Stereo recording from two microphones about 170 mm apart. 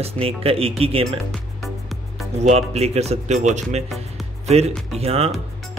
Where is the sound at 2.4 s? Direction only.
40° right (ahead or behind).